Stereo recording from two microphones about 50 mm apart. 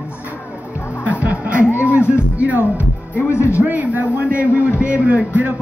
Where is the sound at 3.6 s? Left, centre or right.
Right.